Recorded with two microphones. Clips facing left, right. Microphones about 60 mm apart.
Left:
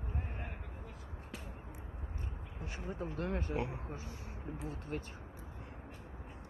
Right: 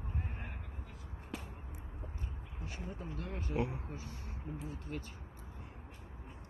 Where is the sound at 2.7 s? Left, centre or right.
Left.